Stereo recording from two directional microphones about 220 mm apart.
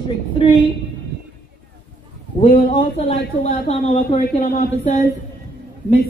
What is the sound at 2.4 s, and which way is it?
Speech, 40° left (ahead or behind).